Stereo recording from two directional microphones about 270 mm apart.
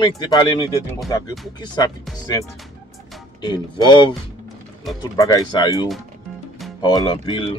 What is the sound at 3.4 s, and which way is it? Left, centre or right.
Speech, centre.